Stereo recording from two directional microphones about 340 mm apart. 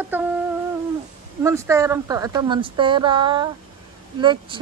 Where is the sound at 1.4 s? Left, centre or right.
Centre.